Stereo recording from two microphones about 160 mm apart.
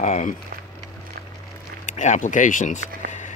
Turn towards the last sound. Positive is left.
turn(degrees=50)  # may be behind; listen again after turning